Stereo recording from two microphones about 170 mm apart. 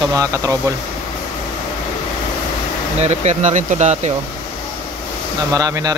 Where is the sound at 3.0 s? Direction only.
40° right (ahead or behind).